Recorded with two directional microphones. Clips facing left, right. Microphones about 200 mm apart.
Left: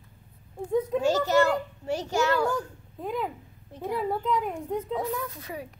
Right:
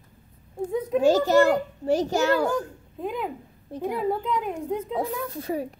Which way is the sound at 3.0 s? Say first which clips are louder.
Right 1 dB; 15° right (ahead or behind).